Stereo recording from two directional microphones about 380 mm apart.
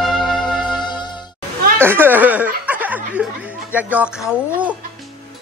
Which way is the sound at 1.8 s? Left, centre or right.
Centre.